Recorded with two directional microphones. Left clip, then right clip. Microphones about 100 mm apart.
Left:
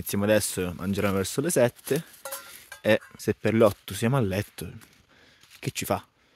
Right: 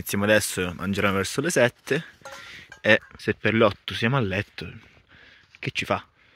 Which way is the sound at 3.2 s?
35° left (ahead or behind).